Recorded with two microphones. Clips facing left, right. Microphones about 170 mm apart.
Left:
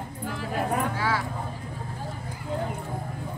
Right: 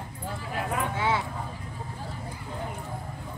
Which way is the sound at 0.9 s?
20° right (ahead or behind).